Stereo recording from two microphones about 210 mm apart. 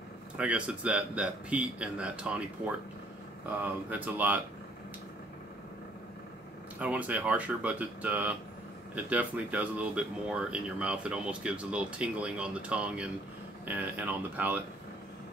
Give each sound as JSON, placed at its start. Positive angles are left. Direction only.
{"t": 0.4, "sound": "speech", "side_deg": -5}
{"t": 3.4, "sound": "speech", "side_deg": -10}
{"t": 6.8, "sound": "speech", "side_deg": -5}